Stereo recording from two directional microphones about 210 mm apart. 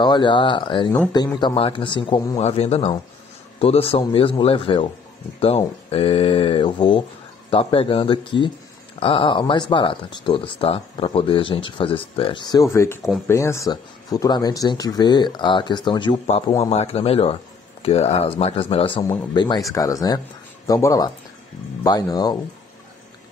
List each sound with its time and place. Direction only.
0.0 s speech: 20° left (ahead or behind)
5.9 s speech: 25° left (ahead or behind)